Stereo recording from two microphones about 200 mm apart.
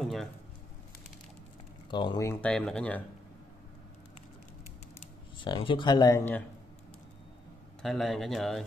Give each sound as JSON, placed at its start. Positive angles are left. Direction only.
{"t": 0.0, "sound": "a sound", "side_deg": 0}
{"t": 1.9, "sound": "speech", "side_deg": 25}
{"t": 5.4, "sound": "speech", "side_deg": 25}
{"t": 7.8, "sound": "speech", "side_deg": 0}